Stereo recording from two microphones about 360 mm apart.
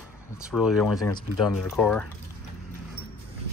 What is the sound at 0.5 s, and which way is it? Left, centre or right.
Speech, centre.